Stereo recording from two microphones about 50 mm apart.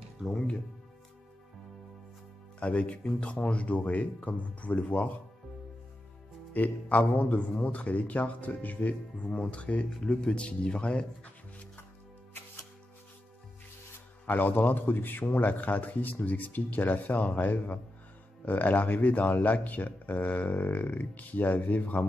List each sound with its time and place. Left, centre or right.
0.3 s speech: centre
2.6 s speech: left
6.5 s speech: left
9.2 s speech: left
14.2 s speech: left